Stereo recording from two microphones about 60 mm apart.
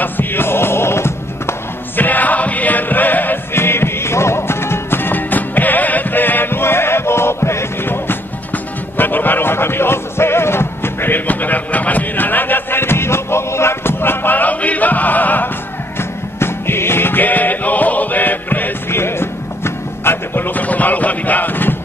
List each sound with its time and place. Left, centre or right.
0.0 s music: left
2.0 s music: left
16.0 s music: left